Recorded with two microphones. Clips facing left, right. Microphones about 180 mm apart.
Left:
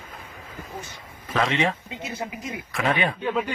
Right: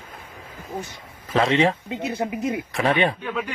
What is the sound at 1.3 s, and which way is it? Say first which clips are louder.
A man's voice: right 4 dB; 30° right (ahead or behind).